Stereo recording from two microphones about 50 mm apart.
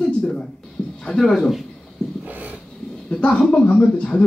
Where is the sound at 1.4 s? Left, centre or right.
Centre.